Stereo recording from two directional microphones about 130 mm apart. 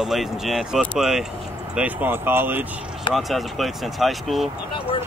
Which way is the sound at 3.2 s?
Centre (ahead or behind).